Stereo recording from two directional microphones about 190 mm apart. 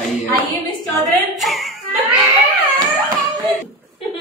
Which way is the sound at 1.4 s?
Centre (ahead or behind).